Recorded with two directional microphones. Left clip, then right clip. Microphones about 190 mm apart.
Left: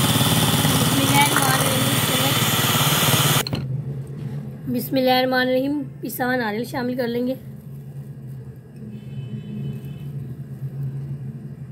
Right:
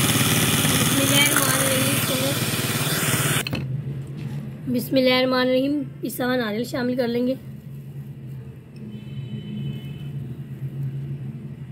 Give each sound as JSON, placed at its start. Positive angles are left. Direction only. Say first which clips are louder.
{"t": 0.0, "sound": "vehicle", "louder": "left 1 dB", "side_deg": 10}
{"t": 1.8, "sound": "vehicle", "louder": "left 2 dB", "side_deg": 25}
{"t": 4.7, "sound": "a woman's voice", "louder": "even", "side_deg": -10}